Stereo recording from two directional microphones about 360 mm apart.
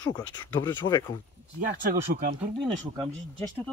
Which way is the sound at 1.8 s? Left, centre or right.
Right.